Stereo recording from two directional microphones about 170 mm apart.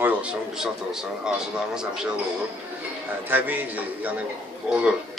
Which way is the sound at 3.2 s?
10° right (ahead or behind).